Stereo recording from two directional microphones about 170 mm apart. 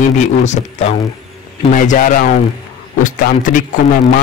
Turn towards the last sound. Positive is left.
turn(degrees=55)  # may be behind; listen again after turning